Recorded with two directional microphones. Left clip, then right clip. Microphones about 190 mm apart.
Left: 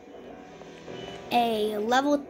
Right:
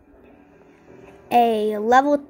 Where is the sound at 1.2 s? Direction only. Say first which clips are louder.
Right 7 dB; 10° right (ahead or behind).